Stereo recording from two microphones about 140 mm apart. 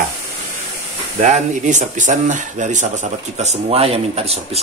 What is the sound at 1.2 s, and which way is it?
Speech, 60° right (ahead or behind).